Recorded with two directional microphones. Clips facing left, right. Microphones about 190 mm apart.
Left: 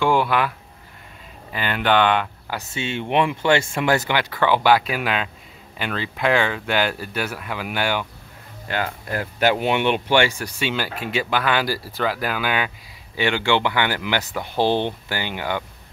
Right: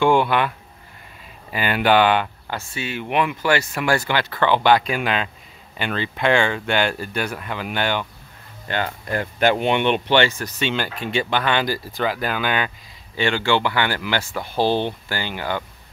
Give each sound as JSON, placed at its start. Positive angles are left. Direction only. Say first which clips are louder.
{"t": 0.0, "sound": "a sound", "louder": "right 2 dB", "side_deg": 0}
{"t": 1.5, "sound": "speech", "louder": "right 2 dB", "side_deg": -10}
{"t": 2.5, "sound": "speech", "louder": "left 1 dB", "side_deg": 25}